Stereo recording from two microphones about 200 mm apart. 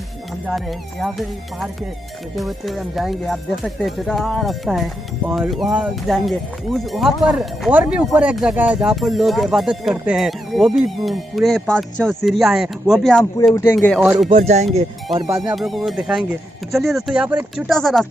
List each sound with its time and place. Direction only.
0.5 s speech: centre (ahead or behind)
14.3 s speech: 35° right (ahead or behind)
15.1 s speech: 20° right (ahead or behind)
15.5 s speech: centre (ahead or behind)